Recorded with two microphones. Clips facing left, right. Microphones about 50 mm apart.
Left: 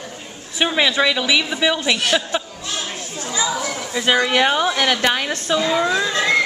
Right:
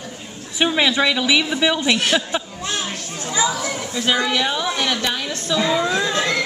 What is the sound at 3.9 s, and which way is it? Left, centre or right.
Speech, centre.